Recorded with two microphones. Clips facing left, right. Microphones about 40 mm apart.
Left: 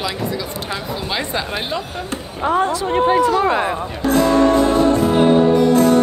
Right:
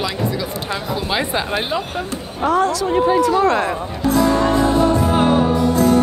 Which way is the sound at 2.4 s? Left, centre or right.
Left.